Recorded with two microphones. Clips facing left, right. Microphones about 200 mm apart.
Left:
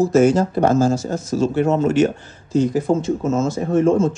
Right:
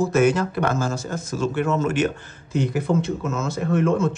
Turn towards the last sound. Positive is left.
turn(degrees=-60)  # may be behind; listen again after turning